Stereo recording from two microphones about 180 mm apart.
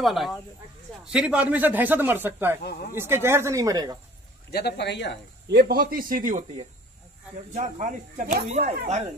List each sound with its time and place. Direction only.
0.0 s speech: centre (ahead or behind)
2.6 s speech: 55° left (ahead or behind)
2.9 s speech: 15° right (ahead or behind)
4.5 s a man's voice: 60° left (ahead or behind)
5.5 s speech: 60° right (ahead or behind)
7.5 s speech: 40° right (ahead or behind)